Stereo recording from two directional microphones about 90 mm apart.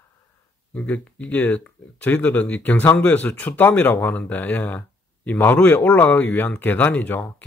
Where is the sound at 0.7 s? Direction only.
15° left (ahead or behind).